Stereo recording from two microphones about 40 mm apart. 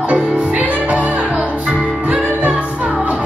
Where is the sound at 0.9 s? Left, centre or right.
Right.